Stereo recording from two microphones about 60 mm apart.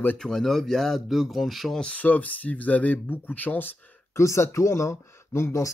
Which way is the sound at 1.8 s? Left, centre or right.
Left.